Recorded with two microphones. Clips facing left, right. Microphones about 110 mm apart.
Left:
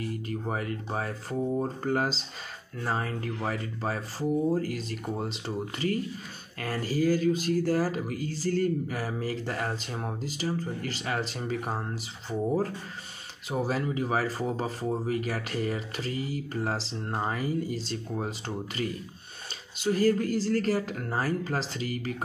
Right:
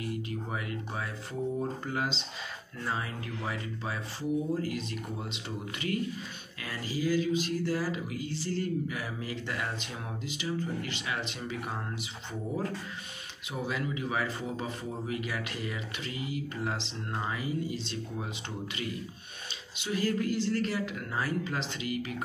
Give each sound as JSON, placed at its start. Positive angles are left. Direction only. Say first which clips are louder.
{"t": 0.0, "sound": "speech", "louder": "left 3 dB", "side_deg": 40}
{"t": 19.8, "sound": "speech", "louder": "left 6 dB", "side_deg": 40}